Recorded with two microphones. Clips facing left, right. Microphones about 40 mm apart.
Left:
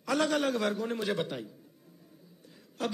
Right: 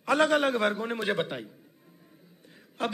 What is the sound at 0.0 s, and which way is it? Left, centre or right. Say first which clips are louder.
A man's voice: right 5 dB; right.